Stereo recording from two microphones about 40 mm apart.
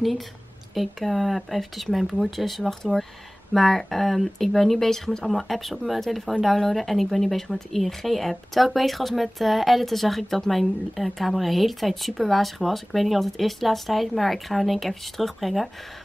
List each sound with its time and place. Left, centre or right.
0.7 s speech: centre